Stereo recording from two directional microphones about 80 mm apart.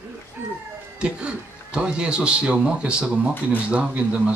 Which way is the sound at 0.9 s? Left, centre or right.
Centre.